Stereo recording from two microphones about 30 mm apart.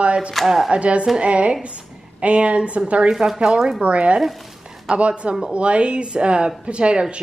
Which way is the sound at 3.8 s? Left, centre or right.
Right.